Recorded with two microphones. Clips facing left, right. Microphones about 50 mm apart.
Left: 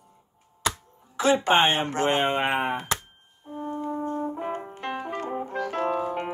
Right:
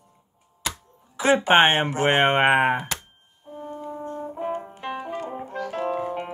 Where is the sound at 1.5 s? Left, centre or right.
Right.